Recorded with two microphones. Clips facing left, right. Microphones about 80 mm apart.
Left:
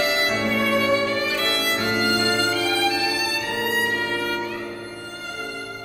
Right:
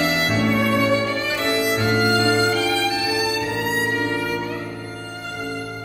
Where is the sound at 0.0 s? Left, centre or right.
Right.